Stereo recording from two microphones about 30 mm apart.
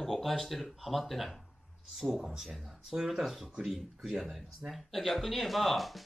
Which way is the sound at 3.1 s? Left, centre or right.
Centre.